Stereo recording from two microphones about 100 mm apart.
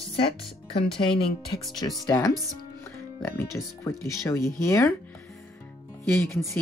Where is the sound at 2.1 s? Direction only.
35° left (ahead or behind).